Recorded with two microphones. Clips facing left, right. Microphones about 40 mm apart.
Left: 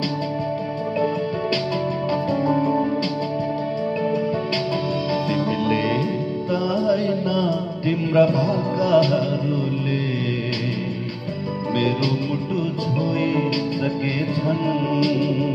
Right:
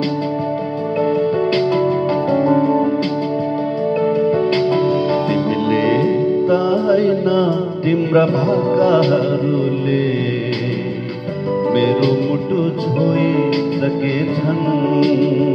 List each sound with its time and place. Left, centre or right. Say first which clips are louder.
2.3 s music: right 6 dB; right
5.3 s music: right 5 dB; centre
11.7 s music: right 6 dB; centre
15.0 s music: right 6 dB; centre